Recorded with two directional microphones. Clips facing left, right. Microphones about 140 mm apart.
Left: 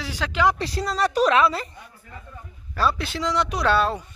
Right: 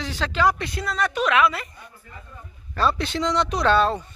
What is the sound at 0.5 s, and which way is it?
A woman's voice, 35° left (ahead or behind).